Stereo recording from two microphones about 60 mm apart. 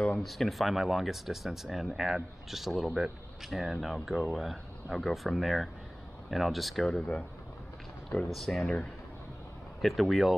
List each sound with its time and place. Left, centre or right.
0.2 s speech: centre
6.9 s speech: centre
8.3 s speech: centre
9.8 s speech: centre